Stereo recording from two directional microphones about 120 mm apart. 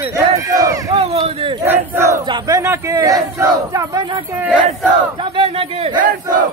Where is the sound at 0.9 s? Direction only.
55° right (ahead or behind).